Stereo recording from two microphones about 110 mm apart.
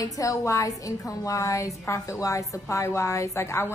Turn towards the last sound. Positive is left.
turn(degrees=25)  # may be behind; listen again after turning